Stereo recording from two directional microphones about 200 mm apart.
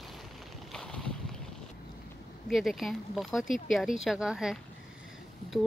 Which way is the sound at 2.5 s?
Centre (ahead or behind).